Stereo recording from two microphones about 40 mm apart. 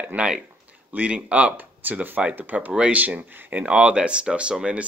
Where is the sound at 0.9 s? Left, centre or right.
Right.